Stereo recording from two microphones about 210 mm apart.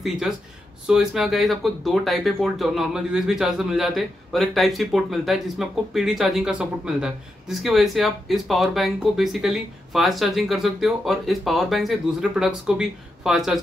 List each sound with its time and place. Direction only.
0.8 s speech: 5° right (ahead or behind)